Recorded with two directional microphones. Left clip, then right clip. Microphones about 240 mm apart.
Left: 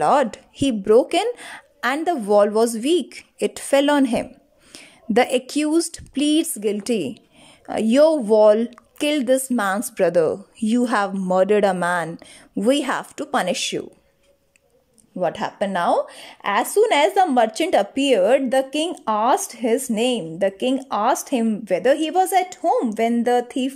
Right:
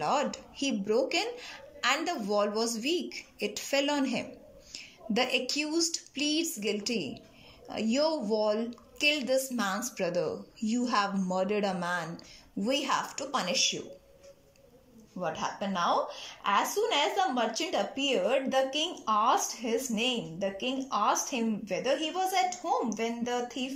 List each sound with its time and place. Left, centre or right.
0.0 s a woman's voice: left
15.1 s a woman's voice: left